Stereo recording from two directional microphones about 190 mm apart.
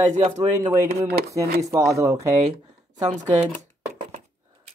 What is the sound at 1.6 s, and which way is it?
Speech, 15° right (ahead or behind).